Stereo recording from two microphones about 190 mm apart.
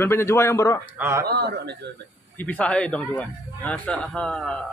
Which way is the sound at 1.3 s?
60° right (ahead or behind).